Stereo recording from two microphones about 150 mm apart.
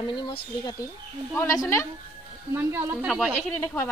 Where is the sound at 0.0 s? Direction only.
30° left (ahead or behind).